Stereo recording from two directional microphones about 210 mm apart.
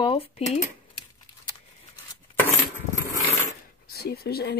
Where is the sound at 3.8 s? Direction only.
45° left (ahead or behind).